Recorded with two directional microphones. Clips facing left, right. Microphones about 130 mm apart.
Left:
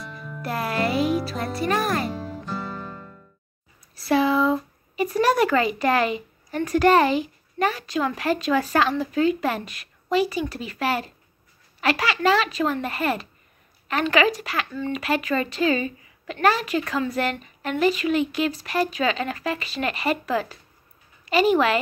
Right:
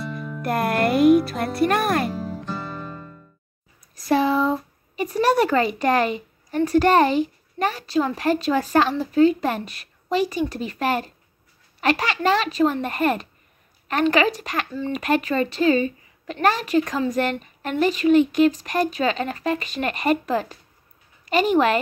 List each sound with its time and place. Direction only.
0.0 s music: centre (ahead or behind)
0.4 s music: 55° right (ahead or behind)
1.2 s speech: 55° right (ahead or behind)
2.0 s music: centre (ahead or behind)
3.9 s a sound: 40° right (ahead or behind)
5.2 s a child's voice: 40° right (ahead or behind)